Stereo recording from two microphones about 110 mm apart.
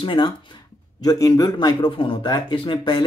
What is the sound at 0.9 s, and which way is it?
A man's voice, 35° left (ahead or behind).